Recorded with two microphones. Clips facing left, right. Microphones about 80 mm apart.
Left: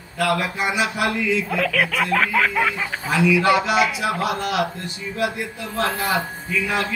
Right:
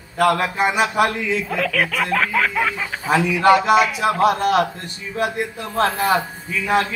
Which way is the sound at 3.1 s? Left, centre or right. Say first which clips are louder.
Right 3 dB; right.